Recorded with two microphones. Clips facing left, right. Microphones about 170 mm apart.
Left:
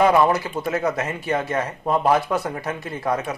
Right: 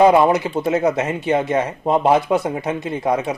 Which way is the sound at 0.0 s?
20° right (ahead or behind).